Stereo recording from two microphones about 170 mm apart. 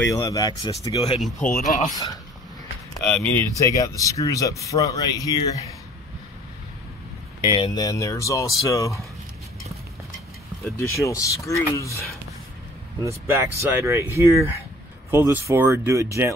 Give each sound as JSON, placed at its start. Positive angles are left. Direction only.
{"t": 0.0, "sound": "speech", "side_deg": 20}
{"t": 1.4, "sound": "speech", "side_deg": 50}
{"t": 1.9, "sound": "speech", "side_deg": 20}
{"t": 3.3, "sound": "speech", "side_deg": 20}
{"t": 7.5, "sound": "speech", "side_deg": 25}
{"t": 10.8, "sound": "speech", "side_deg": 15}
{"t": 13.0, "sound": "speech", "side_deg": -15}